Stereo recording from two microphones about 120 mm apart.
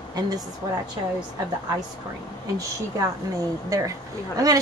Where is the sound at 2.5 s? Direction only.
25° right (ahead or behind).